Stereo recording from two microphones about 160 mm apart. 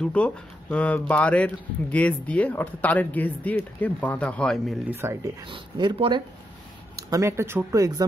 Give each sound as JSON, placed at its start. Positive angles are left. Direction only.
{"t": 0.0, "sound": "speech", "side_deg": 10}
{"t": 4.8, "sound": "speech", "side_deg": -15}
{"t": 5.5, "sound": "speech", "side_deg": -30}
{"t": 7.1, "sound": "speech", "side_deg": -20}